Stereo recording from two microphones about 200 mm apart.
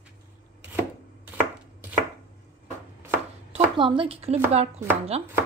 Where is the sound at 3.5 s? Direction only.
25° right (ahead or behind).